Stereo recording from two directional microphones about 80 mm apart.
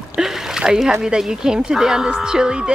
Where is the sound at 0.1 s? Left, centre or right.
Centre.